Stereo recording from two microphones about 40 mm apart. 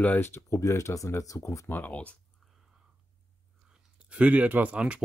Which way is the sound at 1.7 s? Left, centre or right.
Left.